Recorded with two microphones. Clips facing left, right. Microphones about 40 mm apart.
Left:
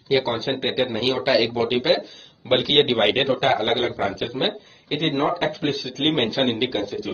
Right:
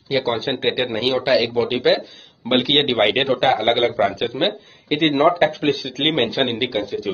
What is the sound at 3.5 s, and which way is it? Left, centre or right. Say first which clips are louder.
A man's voice: right 4 dB; right.